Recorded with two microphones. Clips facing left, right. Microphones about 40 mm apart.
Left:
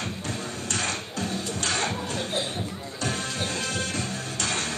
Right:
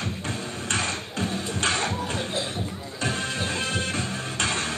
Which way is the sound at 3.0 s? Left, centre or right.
Right.